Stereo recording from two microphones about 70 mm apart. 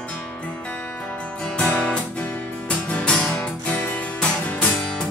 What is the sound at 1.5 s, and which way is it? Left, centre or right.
Music, centre.